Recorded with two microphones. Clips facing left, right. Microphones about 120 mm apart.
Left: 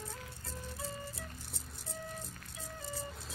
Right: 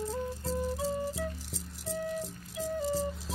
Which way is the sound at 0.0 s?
90° right.